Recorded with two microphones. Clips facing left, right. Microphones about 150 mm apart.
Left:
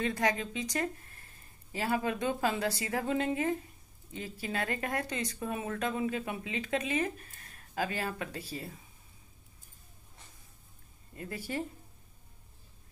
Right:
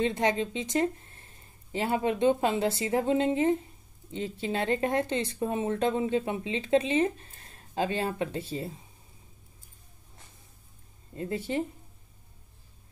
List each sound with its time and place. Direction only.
0.0 s speech: 25° right (ahead or behind)
11.1 s speech: 25° right (ahead or behind)